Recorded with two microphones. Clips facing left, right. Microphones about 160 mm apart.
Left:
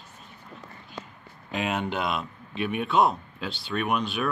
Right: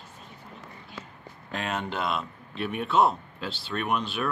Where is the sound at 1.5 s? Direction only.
5° left (ahead or behind).